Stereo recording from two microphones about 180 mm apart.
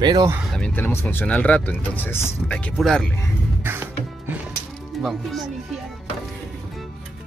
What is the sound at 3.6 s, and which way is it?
Music, 10° right (ahead or behind).